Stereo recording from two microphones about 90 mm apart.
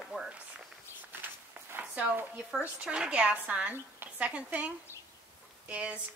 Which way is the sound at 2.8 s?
10° right (ahead or behind).